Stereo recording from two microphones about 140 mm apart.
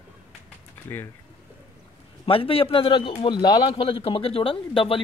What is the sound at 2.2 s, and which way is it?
A man's voice, 40° left (ahead or behind).